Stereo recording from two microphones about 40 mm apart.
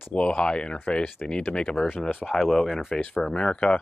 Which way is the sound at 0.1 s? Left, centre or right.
Left.